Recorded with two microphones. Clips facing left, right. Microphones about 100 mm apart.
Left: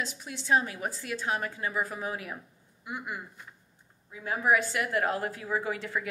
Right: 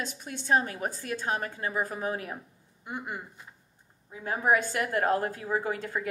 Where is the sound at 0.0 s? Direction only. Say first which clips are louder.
Even; 50° right (ahead or behind).